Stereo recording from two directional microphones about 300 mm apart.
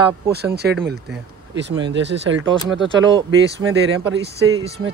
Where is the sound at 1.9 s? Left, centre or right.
Right.